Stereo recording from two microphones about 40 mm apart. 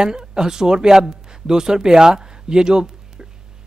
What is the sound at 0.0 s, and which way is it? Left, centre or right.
Speech, centre.